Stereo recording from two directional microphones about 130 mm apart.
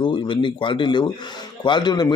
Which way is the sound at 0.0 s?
40° left (ahead or behind).